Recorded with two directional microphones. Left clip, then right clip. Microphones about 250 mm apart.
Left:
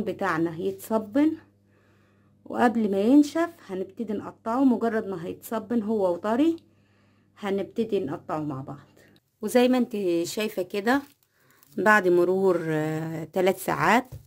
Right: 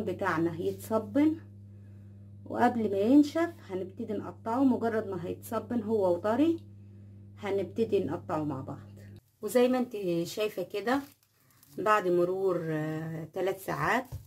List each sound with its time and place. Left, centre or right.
0.0 s speech: left
2.4 s speech: left
9.4 s speech: left